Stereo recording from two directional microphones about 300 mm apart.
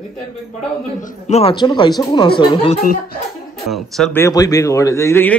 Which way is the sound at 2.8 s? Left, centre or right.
Left.